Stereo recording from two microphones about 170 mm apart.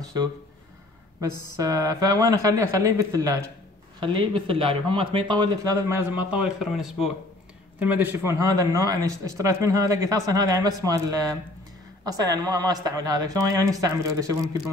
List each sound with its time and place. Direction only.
1.6 s speech: 20° right (ahead or behind)